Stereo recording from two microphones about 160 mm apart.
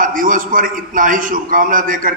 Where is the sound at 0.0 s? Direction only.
60° right (ahead or behind).